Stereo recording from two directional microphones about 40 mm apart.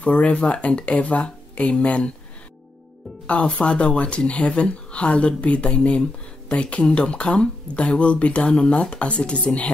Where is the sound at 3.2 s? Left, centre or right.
Left.